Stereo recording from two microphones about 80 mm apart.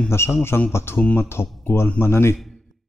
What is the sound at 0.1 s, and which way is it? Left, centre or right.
A man's voice, left.